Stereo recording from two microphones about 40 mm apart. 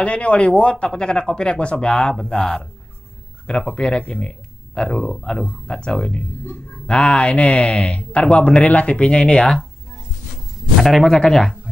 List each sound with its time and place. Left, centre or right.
0.0 s speech: left
3.7 s speech: left
4.1 s a sound: left
5.2 s speech: centre
10.8 s speech: centre
11.1 s speech: centre